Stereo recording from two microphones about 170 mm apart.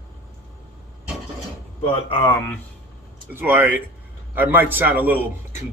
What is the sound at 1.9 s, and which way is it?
Speech, 30° left (ahead or behind).